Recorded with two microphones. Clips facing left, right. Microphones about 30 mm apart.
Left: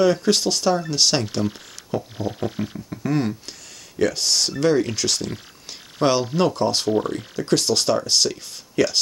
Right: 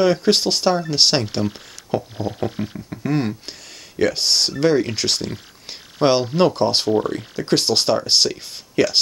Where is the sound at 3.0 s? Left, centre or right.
Right.